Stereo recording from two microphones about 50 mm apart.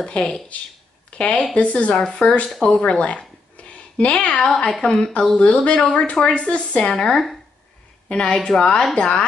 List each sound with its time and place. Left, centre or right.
0.0 s speech: centre
2.0 s a woman's voice: centre
2.8 s a woman's voice: left
6.9 s a woman's voice: centre